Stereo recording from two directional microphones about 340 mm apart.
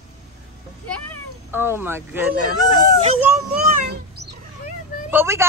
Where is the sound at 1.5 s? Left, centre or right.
Centre.